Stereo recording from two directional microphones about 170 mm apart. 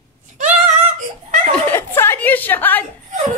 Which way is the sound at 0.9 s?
50° right (ahead or behind).